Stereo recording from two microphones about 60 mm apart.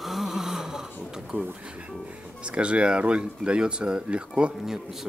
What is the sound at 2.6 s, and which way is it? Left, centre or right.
Speech, centre.